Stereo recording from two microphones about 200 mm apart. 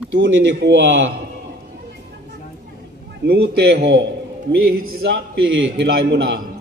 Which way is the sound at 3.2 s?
60° right (ahead or behind).